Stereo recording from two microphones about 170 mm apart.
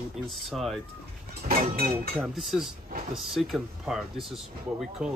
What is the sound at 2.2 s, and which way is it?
Speech, centre (ahead or behind).